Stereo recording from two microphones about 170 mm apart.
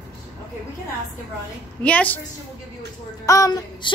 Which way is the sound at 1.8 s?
10° left (ahead or behind).